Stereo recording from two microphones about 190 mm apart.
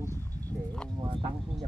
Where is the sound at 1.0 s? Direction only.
30° right (ahead or behind).